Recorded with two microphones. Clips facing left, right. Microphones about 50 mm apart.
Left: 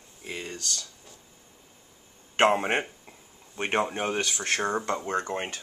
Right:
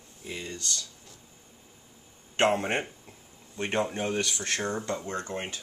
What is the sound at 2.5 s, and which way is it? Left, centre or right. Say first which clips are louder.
Speech: left 2 dB; centre.